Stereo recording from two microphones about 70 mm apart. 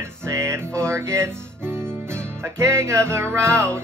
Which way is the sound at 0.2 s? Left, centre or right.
Right.